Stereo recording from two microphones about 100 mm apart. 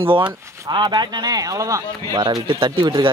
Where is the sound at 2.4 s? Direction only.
55° right (ahead or behind).